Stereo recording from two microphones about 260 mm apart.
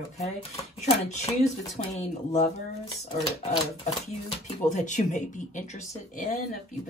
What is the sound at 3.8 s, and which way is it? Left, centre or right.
Speech, left.